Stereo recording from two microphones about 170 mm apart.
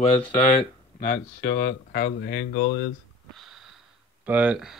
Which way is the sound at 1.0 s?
60° left (ahead or behind).